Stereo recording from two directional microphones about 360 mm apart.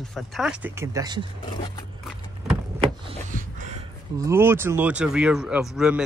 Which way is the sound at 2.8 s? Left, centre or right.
Centre.